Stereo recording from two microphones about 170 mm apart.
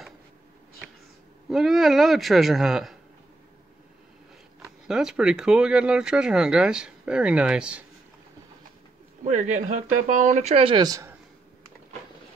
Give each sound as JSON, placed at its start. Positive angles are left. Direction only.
{"t": 1.5, "sound": "speech", "side_deg": 0}
{"t": 4.6, "sound": "speech", "side_deg": -5}
{"t": 9.2, "sound": "speech", "side_deg": -45}